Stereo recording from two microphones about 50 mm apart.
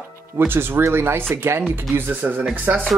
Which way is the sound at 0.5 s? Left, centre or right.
Right.